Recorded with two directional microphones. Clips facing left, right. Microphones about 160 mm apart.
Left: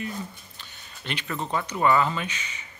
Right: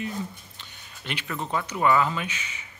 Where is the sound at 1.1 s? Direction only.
5° right (ahead or behind).